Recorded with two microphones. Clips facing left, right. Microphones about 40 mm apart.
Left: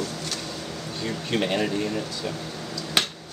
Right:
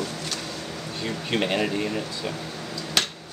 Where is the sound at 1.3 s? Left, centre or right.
Centre.